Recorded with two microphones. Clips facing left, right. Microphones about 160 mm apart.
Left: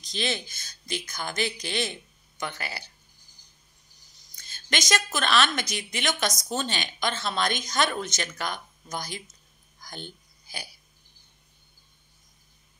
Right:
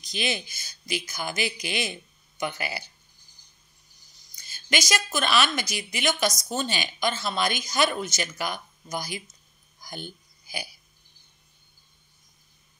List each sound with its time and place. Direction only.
0.0 s speech: 10° right (ahead or behind)
4.4 s a woman's voice: 5° right (ahead or behind)
9.8 s hiccup: 10° right (ahead or behind)